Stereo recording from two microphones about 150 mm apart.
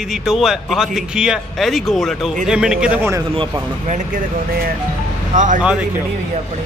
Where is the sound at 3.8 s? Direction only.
55° right (ahead or behind).